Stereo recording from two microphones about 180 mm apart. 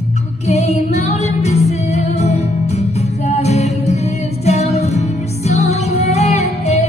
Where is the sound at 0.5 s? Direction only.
35° left (ahead or behind).